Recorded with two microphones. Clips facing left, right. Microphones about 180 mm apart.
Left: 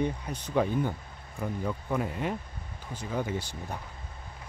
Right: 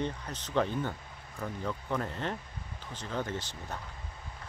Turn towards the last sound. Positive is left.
turn(degrees=10)  # may be behind; listen again after turning